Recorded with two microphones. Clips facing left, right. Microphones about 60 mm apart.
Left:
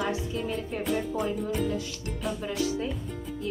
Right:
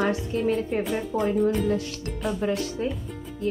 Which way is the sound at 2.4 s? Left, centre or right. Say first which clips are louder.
Right 5 dB; right.